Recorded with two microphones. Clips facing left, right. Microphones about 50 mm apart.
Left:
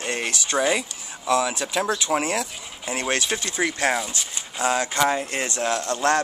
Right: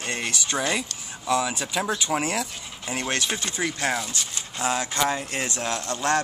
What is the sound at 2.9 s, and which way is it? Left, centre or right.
Speech, centre.